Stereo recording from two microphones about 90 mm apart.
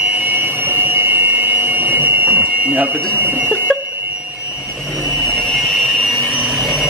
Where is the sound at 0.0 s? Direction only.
20° right (ahead or behind).